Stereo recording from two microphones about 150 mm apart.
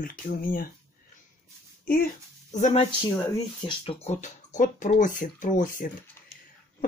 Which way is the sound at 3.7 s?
40° left (ahead or behind).